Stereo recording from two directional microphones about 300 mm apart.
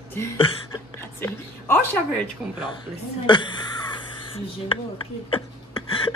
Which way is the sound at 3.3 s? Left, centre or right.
Centre.